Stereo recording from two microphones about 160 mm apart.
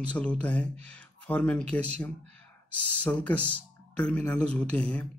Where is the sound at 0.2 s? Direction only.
10° left (ahead or behind).